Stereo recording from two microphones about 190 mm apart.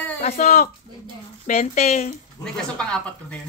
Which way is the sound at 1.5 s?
35° left (ahead or behind).